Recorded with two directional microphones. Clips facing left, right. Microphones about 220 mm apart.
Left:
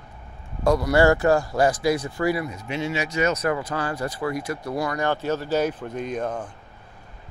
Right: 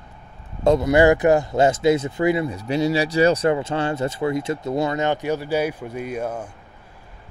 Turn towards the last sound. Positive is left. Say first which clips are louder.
# right 1 dB
turn(degrees=-10)  # may be behind; listen again after turning